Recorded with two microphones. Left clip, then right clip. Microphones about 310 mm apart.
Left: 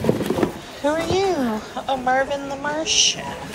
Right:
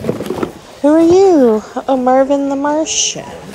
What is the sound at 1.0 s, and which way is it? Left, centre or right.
Speech, right.